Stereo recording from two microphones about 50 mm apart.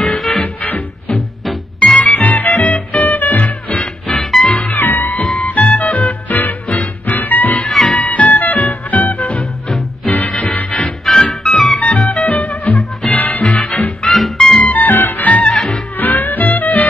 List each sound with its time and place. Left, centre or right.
0.0 s music: centre
0.6 s music: left
1.1 s music: centre
1.8 s music: left
4.1 s music: centre
4.6 s music: left
5.4 s music: left
9.7 s music: centre
11.8 s music: left
12.3 s music: left
14.0 s music: centre
14.6 s music: left
15.5 s music: centre
16.0 s music: left